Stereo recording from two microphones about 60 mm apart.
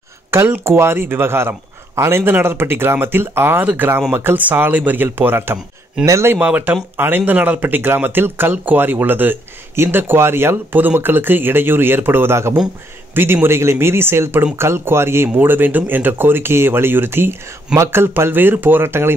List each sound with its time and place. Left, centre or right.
0.3 s speech: right
4.4 s speech: right
6.4 s speech: right
15.2 s speech: right